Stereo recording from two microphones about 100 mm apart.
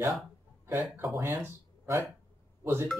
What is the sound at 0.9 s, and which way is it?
Speech, 25° right (ahead or behind).